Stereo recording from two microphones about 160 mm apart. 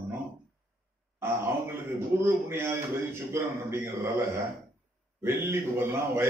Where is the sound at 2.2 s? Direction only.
15° right (ahead or behind).